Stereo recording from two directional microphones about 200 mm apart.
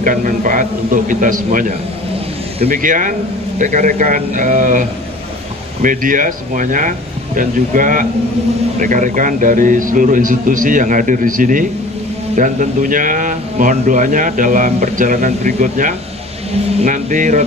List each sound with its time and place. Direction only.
0.0 s a man's voice: 40° right (ahead or behind)
2.7 s a man's voice: 40° right (ahead or behind)